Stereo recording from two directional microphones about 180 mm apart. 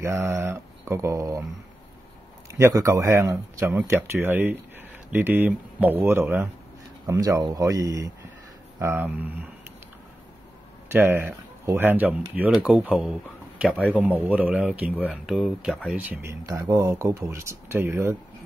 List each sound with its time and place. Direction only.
0.0 s speech: 15° right (ahead or behind)
2.5 s speech: 15° right (ahead or behind)
10.9 s speech: 10° right (ahead or behind)